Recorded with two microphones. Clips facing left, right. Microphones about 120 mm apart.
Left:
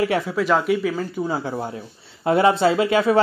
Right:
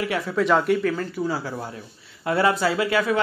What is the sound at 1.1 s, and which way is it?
Speech, 20° left (ahead or behind).